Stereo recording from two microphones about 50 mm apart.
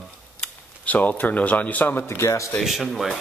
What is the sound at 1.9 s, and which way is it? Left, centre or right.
Speech, left.